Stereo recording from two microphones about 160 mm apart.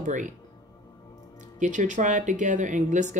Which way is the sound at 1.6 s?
50° right (ahead or behind).